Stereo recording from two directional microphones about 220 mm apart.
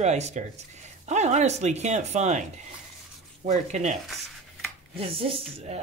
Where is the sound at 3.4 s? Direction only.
30° right (ahead or behind).